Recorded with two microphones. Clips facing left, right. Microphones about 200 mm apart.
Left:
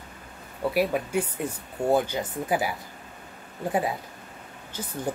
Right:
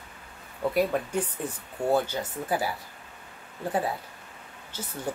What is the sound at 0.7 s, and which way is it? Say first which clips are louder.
Speech: left 1 dB; 10° left (ahead or behind).